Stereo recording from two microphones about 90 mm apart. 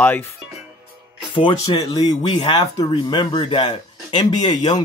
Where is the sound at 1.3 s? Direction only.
70° left (ahead or behind).